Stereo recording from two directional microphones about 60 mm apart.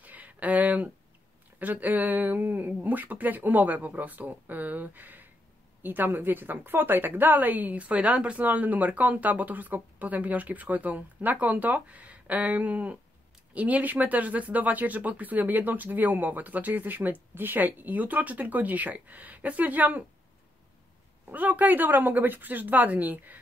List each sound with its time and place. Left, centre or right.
0.0 s a sound: right
1.6 s a woman's voice: right
21.3 s a woman's voice: right